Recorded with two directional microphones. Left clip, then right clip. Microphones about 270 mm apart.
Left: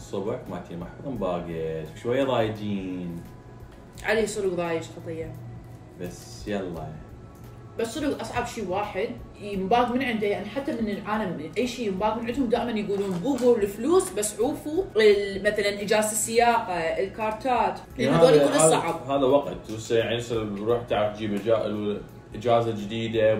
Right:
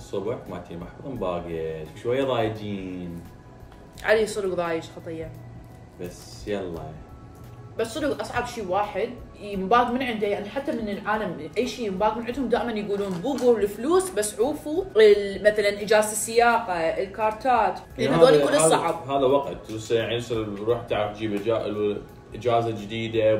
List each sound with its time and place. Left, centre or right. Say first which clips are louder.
0.1 s a man's voice: right 1 dB; centre
4.0 s speech: right 3 dB; centre
5.9 s a man's voice: right 1 dB; centre
7.7 s speech: right 2 dB; centre
19.0 s a man's voice: left 2 dB; centre